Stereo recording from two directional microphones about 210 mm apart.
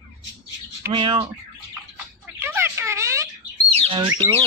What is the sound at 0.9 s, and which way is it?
Speech, 25° right (ahead or behind).